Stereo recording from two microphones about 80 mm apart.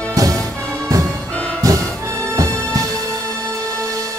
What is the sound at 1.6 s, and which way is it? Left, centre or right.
Music, right.